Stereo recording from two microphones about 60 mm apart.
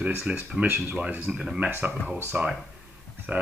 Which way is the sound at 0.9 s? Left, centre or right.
Right.